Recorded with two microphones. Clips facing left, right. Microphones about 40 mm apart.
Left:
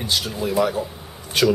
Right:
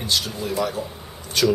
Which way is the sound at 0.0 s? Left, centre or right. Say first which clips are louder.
Left 1 dB; centre.